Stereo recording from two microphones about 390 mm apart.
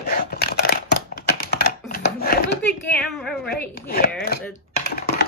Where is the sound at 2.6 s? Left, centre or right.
Centre.